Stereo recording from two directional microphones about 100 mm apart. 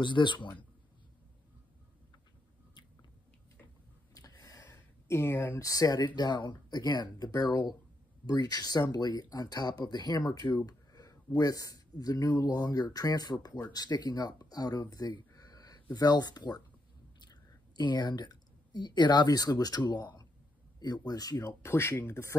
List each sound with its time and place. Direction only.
0.0 s speech: 50° left (ahead or behind)
4.1 s a sound: 35° left (ahead or behind)
5.1 s a woman's voice: 25° left (ahead or behind)